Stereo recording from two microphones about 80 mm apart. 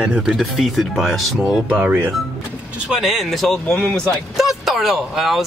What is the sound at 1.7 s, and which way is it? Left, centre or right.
Speech, right.